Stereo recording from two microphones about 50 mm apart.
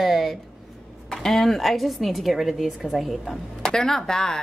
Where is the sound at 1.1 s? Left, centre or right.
Centre.